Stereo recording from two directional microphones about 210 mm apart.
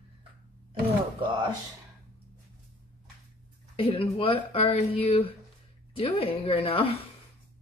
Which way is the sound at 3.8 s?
25° left (ahead or behind).